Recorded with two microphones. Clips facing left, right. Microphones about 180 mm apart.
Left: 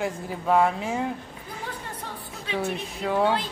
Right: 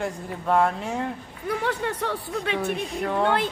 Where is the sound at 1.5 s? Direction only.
75° right (ahead or behind).